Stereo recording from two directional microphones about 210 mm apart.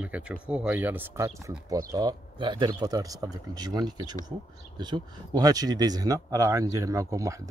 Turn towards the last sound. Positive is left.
turn(degrees=-15)  # may be behind; listen again after turning